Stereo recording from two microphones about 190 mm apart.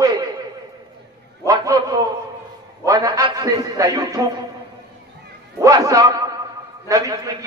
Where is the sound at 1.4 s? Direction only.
20° right (ahead or behind).